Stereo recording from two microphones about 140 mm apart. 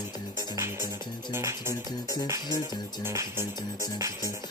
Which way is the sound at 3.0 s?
15° right (ahead or behind).